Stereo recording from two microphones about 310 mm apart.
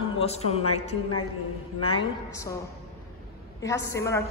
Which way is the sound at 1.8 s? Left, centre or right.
Centre.